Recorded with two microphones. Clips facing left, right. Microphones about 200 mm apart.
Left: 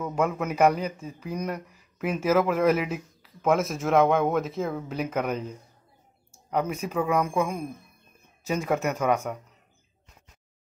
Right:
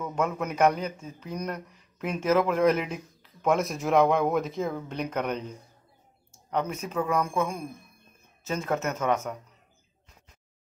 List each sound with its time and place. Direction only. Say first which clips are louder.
0.0 s speech: left 2 dB; 10° left (ahead or behind)